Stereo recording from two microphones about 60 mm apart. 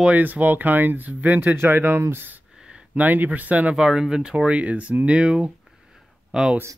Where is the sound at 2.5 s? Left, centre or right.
Centre.